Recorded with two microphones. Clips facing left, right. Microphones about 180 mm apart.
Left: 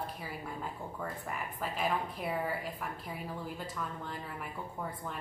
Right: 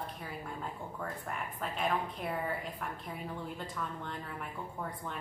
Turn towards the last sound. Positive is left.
turn(degrees=5)  # may be behind; listen again after turning